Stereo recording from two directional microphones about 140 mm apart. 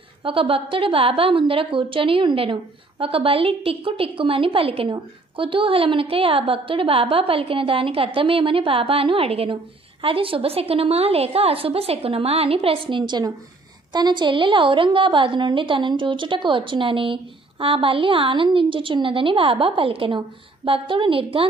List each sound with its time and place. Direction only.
0.2 s a woman's voice: 40° right (ahead or behind)